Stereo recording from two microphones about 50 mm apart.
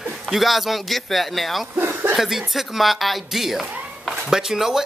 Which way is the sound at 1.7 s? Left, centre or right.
Right.